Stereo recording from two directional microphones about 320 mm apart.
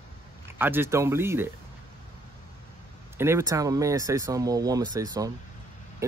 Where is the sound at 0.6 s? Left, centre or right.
Centre.